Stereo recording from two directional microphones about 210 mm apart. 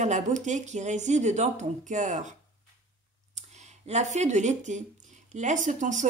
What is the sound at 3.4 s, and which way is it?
Speech, 35° right (ahead or behind).